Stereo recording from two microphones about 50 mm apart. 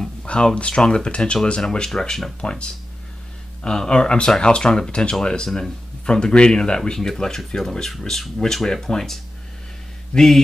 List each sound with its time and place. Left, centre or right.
0.0 s speech: centre
3.6 s speech: centre